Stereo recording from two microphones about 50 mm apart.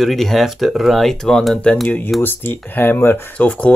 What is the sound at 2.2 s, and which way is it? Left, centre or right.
Speech, left.